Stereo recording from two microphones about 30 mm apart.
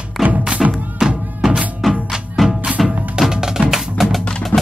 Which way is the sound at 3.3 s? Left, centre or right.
Right.